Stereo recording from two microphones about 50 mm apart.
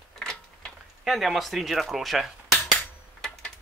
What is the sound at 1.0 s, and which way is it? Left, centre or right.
Speech, centre.